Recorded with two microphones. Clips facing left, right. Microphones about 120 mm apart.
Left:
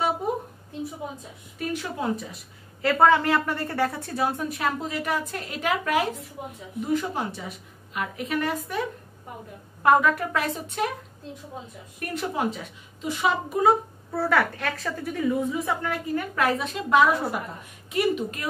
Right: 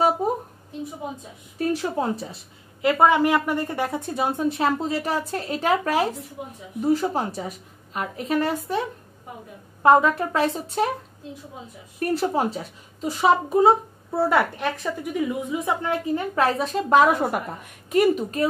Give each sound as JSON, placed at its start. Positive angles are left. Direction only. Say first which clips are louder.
{"t": 1.6, "sound": "a woman's voice", "louder": "right 5 dB", "side_deg": -35}
{"t": 2.8, "sound": "a woman's voice", "louder": "right 1 dB", "side_deg": -15}
{"t": 9.8, "sound": "a woman's voice", "louder": "right 3 dB", "side_deg": -25}
{"t": 12.0, "sound": "a woman's voice", "louder": "right 5 dB", "side_deg": -35}